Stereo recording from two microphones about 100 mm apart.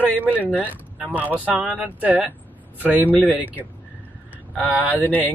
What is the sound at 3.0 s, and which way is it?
Speech, 15° left (ahead or behind).